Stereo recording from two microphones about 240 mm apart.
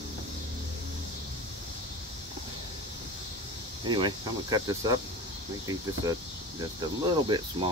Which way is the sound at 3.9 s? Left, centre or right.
Centre.